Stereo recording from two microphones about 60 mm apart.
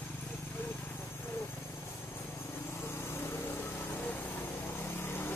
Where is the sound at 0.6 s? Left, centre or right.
Left.